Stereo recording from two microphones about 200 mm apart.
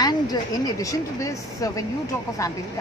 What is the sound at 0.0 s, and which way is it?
Speech, 20° left (ahead or behind).